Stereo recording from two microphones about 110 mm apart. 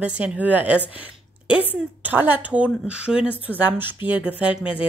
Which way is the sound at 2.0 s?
15° right (ahead or behind).